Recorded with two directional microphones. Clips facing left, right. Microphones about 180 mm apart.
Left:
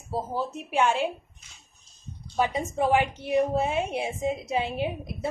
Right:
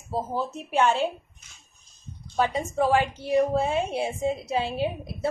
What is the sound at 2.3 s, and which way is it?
Speech, 15° left (ahead or behind).